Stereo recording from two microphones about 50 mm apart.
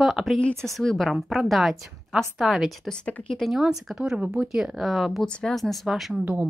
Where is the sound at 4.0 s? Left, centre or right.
Centre.